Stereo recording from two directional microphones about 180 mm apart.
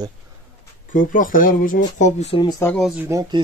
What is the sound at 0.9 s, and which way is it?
Speech, 50° left (ahead or behind).